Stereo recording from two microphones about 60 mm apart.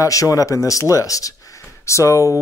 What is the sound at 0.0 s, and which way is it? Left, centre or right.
Speech, left.